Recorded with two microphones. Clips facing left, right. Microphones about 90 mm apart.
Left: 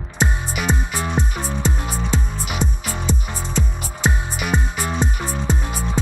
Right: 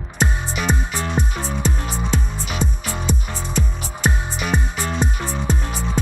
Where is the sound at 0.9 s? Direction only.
15° left (ahead or behind).